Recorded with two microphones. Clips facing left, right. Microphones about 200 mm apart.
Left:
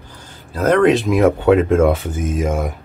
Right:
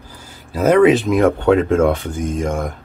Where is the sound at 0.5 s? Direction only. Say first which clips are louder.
Right 2 dB; 10° right (ahead or behind).